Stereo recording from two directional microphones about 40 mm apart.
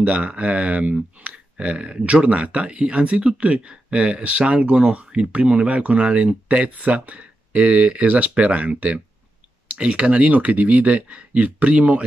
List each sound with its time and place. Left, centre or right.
0.0 s speech: right
6.7 s speech: right